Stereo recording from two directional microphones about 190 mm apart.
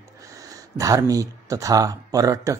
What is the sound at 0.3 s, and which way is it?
Speech, 20° right (ahead or behind).